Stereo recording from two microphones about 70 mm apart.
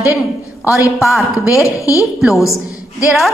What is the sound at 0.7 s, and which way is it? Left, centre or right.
Speech, left.